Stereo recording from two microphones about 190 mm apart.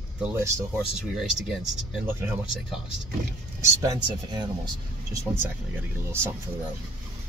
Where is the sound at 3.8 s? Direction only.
20° right (ahead or behind).